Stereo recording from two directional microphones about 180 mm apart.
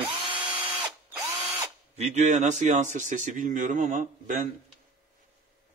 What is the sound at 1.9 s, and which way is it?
Speech, 35° right (ahead or behind).